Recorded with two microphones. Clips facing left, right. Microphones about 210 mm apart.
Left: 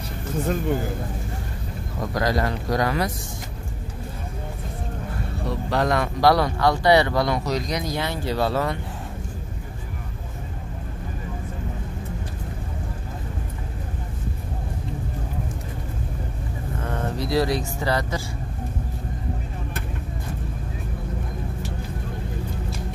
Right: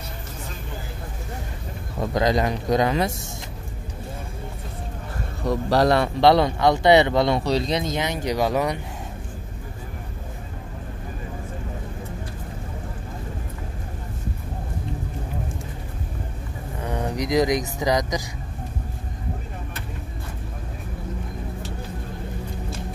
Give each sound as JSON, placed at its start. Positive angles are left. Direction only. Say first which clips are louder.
{"t": 2.1, "sound": "speech", "louder": "right 2 dB", "side_deg": -20}
{"t": 5.4, "sound": "speech", "louder": "right 5 dB", "side_deg": -40}
{"t": 16.8, "sound": "speech", "louder": "right 2 dB", "side_deg": -15}